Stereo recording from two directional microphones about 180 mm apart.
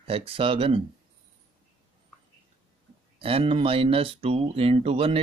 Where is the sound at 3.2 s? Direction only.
30° right (ahead or behind).